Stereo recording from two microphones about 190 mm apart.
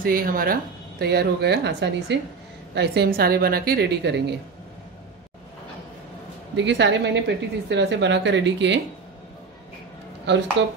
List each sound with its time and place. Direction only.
0.0 s speech: 50° right (ahead or behind)
6.5 s a woman's voice: 70° right (ahead or behind)
10.6 s a woman's voice: 75° right (ahead or behind)